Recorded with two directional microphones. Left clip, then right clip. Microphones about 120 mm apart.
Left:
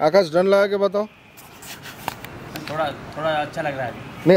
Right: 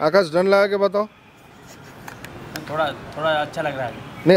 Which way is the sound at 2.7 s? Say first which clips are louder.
Right 2 dB; 20° right (ahead or behind).